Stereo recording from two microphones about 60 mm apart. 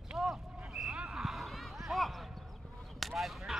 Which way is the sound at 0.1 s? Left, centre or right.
Centre.